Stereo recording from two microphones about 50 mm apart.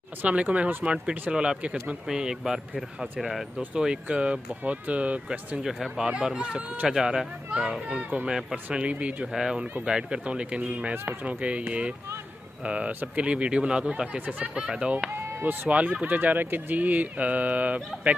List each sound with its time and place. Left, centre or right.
0.2 s speech: right
2.0 s speech: centre
3.7 s speech: right
5.6 s speech: centre
6.3 s speech: centre
8.7 s speech: right
9.3 s speech: centre; by 14.7 s right
15.1 s speech: right
15.7 s speech: right